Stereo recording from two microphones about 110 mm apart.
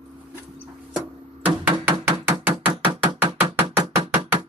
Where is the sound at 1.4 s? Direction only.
15° right (ahead or behind).